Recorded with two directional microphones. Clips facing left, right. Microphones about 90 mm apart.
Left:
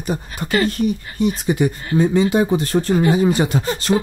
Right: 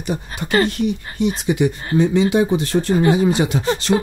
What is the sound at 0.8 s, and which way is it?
Speech, 45° left (ahead or behind).